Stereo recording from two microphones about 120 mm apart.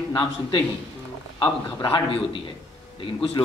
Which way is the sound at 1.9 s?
50° left (ahead or behind).